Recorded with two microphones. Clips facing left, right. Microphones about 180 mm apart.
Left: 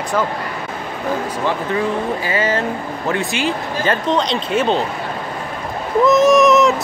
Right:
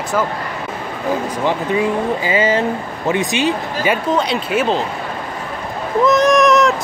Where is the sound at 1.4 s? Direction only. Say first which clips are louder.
Right 3 dB; 15° right (ahead or behind).